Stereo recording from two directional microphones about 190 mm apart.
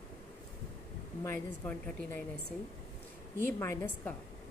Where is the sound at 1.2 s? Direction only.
10° left (ahead or behind).